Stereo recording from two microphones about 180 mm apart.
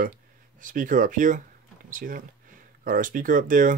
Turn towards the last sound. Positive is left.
turn(degrees=-50)  # may be behind; listen again after turning